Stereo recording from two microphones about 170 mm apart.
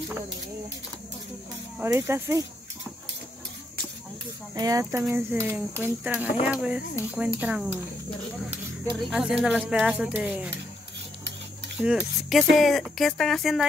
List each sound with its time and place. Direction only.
1.8 s speech: 15° right (ahead or behind)
4.6 s speech: 20° right (ahead or behind)
9.1 s speech: 5° right (ahead or behind)
11.8 s speech: 5° right (ahead or behind)